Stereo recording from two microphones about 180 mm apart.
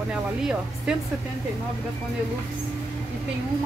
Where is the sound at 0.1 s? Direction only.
5° right (ahead or behind).